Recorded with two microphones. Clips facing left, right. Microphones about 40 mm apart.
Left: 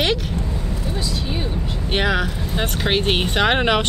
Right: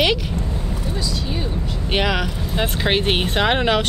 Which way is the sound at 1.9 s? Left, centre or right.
Centre.